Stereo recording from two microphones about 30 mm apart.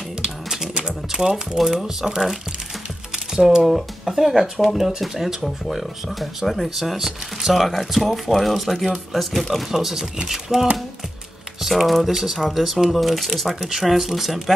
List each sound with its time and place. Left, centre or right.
0.2 s music: centre
1.1 s speech: centre
3.3 s speech: centre
6.7 s speech: centre
9.7 s speech: centre
11.7 s speech: centre
12.1 s speech: centre
13.5 s speech: centre